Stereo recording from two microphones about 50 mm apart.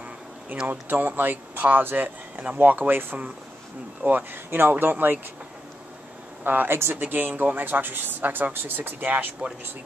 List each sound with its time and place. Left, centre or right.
0.7 s speech: right
4.5 s speech: right
6.4 s speech: right